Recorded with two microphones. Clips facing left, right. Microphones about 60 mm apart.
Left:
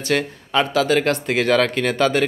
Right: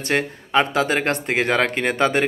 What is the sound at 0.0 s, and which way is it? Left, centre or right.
A man's voice, right.